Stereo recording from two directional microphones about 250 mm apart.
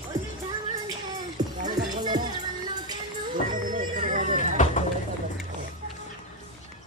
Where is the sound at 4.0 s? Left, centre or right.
Right.